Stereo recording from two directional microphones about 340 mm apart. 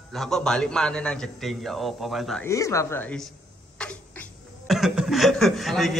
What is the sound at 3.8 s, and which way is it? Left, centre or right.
Chuckle, centre.